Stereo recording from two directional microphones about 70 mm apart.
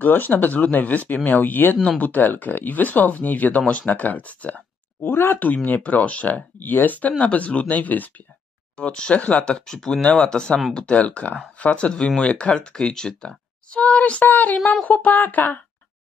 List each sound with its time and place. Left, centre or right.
0.0 s speech: left
5.0 s speech: left
8.7 s speech: centre